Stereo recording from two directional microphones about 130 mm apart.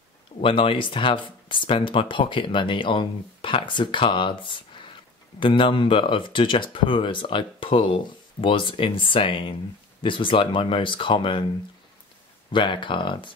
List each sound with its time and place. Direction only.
0.4 s speech: 40° left (ahead or behind)
12.5 s speech: 40° left (ahead or behind)